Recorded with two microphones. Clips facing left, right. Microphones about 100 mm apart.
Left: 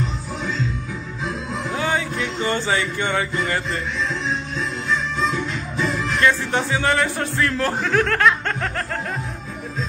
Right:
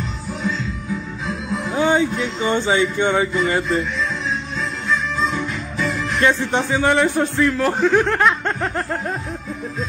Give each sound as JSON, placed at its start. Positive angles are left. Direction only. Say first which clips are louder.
{"t": 1.8, "sound": "music", "louder": "right 7 dB", "side_deg": -20}
{"t": 6.2, "sound": "speech", "louder": "right 2 dB", "side_deg": -15}
{"t": 7.4, "sound": "speech", "louder": "right 2 dB", "side_deg": -5}
{"t": 7.8, "sound": "speech", "louder": "right 3 dB", "side_deg": -20}
{"t": 8.5, "sound": "snicker", "louder": "right 3 dB", "side_deg": -30}